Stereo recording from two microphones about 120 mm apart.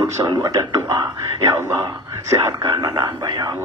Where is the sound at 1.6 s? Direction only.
25° right (ahead or behind).